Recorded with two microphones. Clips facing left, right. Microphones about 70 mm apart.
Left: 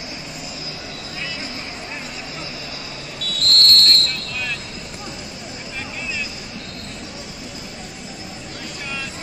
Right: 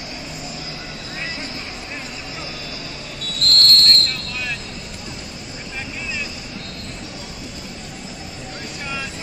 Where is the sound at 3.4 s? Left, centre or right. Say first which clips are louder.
Even; right.